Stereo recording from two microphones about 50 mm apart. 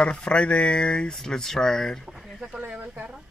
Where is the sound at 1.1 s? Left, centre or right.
Centre.